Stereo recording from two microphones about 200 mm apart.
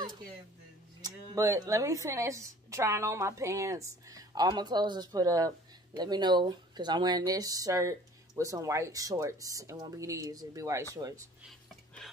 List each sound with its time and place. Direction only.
1.0 s speech: 15° right (ahead or behind)
11.4 s whispering: centre (ahead or behind)